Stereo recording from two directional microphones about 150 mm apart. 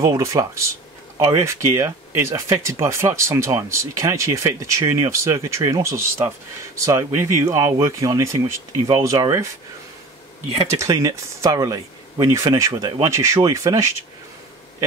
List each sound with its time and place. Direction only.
0.0 s speech: 20° right (ahead or behind)
10.8 s speech: 20° right (ahead or behind)